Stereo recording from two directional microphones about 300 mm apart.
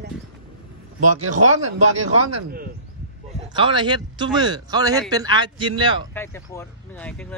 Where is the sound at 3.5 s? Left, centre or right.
Centre.